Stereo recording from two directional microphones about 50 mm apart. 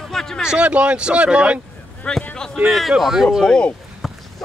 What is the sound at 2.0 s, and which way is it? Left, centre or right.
Speech, centre.